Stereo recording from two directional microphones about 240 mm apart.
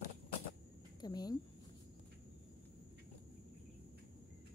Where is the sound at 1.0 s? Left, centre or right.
Centre.